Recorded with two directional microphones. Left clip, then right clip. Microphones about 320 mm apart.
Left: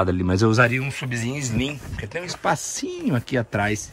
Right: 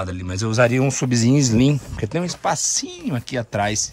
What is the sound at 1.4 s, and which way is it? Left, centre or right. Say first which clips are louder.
Speech: right 8 dB; centre.